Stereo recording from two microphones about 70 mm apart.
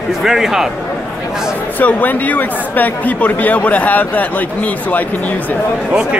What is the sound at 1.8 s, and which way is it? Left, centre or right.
Speech, left.